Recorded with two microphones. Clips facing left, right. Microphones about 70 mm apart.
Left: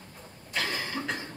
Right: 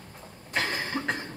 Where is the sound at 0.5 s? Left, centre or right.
Right.